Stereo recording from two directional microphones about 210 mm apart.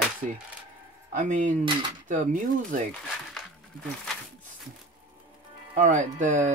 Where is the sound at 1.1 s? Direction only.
35° right (ahead or behind).